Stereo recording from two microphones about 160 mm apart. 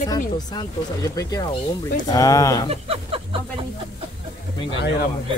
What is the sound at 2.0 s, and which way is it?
Speech, 20° left (ahead or behind).